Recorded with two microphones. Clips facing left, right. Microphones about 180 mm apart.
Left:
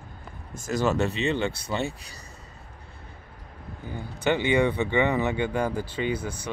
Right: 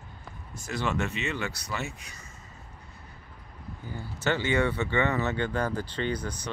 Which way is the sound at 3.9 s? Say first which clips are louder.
Left 4 dB; 15° left (ahead or behind).